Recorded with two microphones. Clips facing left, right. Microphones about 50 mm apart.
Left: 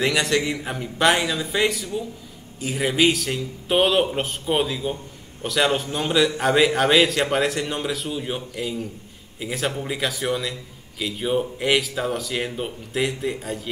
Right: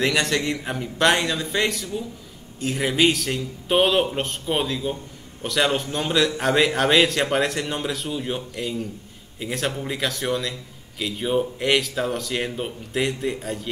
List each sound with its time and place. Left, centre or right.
0.0 s a man's voice: centre